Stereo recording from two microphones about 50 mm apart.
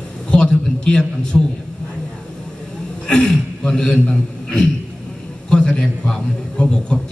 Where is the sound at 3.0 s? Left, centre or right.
Centre.